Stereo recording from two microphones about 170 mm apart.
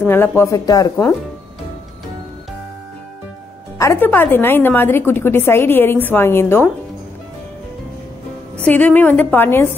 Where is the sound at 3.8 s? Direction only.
15° left (ahead or behind).